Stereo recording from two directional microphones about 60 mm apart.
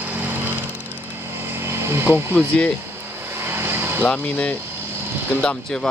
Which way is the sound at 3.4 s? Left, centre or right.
Right.